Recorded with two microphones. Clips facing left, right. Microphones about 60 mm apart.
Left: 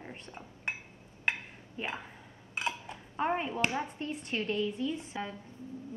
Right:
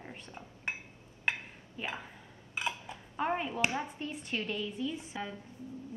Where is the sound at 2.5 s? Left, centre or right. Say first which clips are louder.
Left 1 dB; centre.